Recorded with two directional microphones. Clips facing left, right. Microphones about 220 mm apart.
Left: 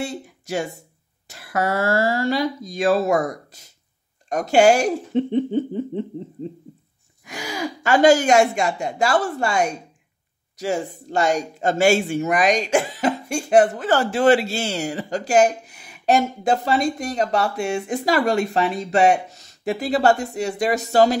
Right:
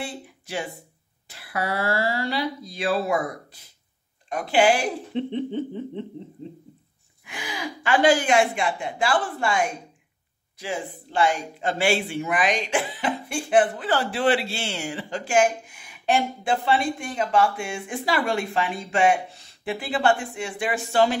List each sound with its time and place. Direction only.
0.0 s a woman's voice: 45° left (ahead or behind)
7.2 s a woman's voice: 40° left (ahead or behind)